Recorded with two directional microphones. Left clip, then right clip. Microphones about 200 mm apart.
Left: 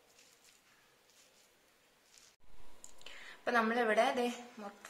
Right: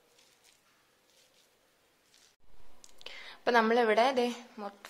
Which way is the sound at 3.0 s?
55° right (ahead or behind).